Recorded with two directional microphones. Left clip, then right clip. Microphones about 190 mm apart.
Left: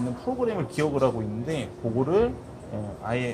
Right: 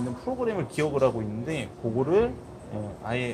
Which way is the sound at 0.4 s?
25° right (ahead or behind).